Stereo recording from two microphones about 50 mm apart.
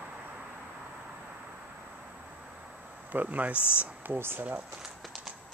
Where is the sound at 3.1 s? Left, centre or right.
Right.